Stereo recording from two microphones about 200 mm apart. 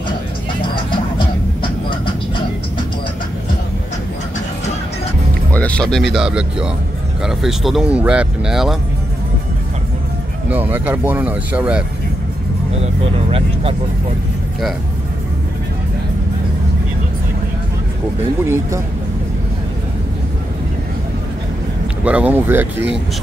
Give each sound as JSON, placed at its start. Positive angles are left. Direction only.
{"t": 1.6, "sound": "vehicle", "side_deg": 25}
{"t": 5.5, "sound": "music", "side_deg": 5}
{"t": 6.1, "sound": "speech", "side_deg": -5}
{"t": 10.5, "sound": "speech", "side_deg": -10}
{"t": 18.4, "sound": "speech", "side_deg": -15}
{"t": 22.0, "sound": "speech", "side_deg": -5}